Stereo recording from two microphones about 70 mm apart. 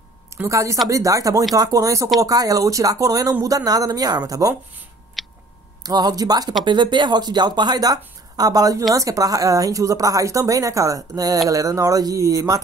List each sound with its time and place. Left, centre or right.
0.5 s a woman's voice: right
5.2 s tick: centre
5.9 s speech: right
6.6 s a woman's voice: right